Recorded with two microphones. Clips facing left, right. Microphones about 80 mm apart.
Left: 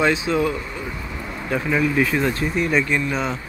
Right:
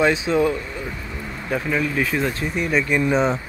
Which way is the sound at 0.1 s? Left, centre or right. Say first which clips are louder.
Right 1 dB; centre.